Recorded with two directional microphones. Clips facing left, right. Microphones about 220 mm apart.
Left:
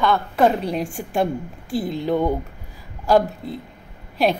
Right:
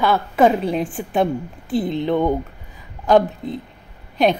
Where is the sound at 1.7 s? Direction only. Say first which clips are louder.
Right 2 dB; 10° left (ahead or behind).